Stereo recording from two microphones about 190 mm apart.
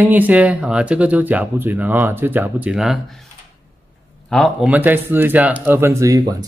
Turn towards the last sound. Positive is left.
turn(degrees=-15)  # may be behind; listen again after turning